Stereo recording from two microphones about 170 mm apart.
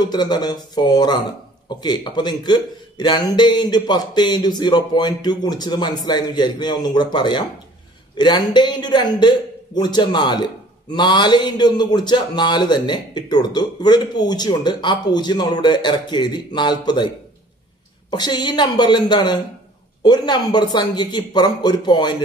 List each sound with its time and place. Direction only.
0.0 s a man's voice: 25° left (ahead or behind)
18.1 s a man's voice: 25° left (ahead or behind)